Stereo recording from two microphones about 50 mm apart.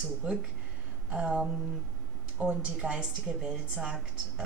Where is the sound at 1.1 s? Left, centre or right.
Right.